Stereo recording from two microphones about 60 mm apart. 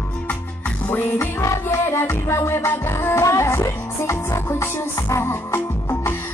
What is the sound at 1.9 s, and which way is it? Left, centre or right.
Music, left.